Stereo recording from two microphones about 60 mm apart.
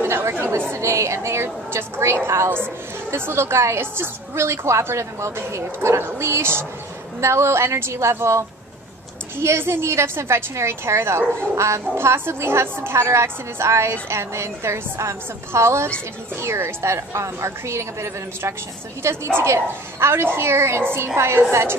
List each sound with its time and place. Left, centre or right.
0.0 s chatter: right
0.7 s a woman's voice: right